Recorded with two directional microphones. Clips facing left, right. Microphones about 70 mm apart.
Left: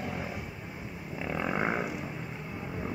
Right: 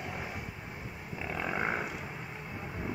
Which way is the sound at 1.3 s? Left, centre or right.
Centre.